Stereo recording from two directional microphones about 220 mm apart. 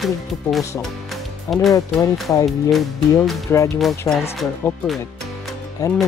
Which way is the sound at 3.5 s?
10° left (ahead or behind).